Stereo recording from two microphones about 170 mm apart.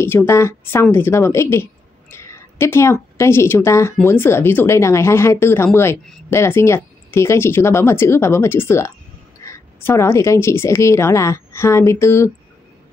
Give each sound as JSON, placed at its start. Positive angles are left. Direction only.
{"t": 0.0, "sound": "a woman's voice", "side_deg": 15}